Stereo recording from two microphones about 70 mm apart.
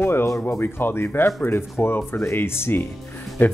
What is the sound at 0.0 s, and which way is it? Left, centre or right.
Music, left.